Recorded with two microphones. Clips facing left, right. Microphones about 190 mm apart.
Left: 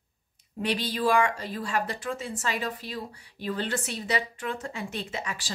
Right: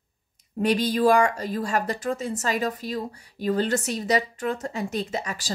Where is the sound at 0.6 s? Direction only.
45° right (ahead or behind).